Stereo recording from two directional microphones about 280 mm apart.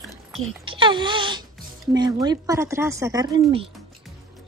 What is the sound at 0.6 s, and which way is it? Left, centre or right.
Speech, centre.